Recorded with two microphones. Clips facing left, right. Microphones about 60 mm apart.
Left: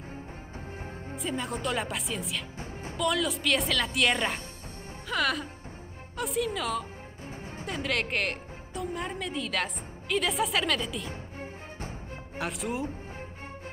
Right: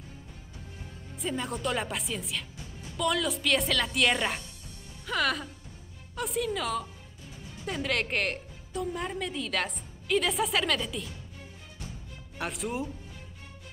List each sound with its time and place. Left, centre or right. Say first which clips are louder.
1.1 s a woman's voice: even; centre
2.6 s music: left 6 dB; left
3.0 s a woman's voice: even; centre
5.0 s music: even; centre
6.1 s a woman's voice: left 1 dB; centre
11.1 s music: left 7 dB; left
12.4 s a woman's voice: left 1 dB; centre